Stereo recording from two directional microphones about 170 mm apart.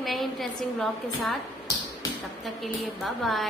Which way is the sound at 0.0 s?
Centre (ahead or behind).